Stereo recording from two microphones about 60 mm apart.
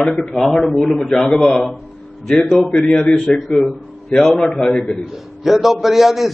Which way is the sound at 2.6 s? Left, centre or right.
Centre.